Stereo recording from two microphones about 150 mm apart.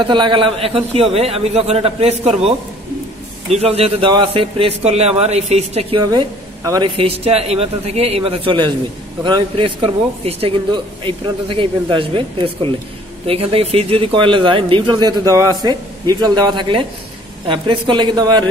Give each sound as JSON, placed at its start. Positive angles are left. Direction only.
{"t": 0.0, "sound": "a man's voice", "side_deg": -30}
{"t": 6.6, "sound": "speech", "side_deg": -25}
{"t": 7.0, "sound": "speech", "side_deg": -40}